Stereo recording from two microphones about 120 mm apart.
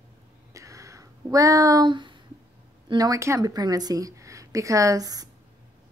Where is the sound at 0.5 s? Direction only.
25° right (ahead or behind).